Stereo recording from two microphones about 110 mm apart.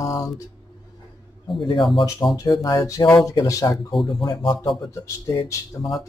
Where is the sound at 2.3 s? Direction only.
35° left (ahead or behind).